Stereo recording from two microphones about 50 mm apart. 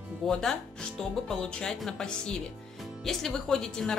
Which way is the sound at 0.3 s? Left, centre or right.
Centre.